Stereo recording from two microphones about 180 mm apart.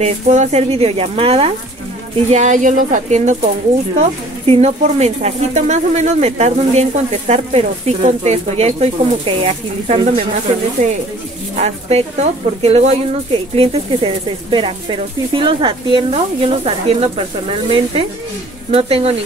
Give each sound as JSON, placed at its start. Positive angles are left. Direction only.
{"t": 0.0, "sound": "speech", "side_deg": -40}